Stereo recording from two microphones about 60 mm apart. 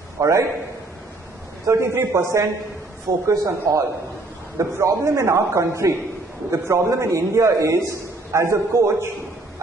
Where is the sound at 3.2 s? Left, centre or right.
Right.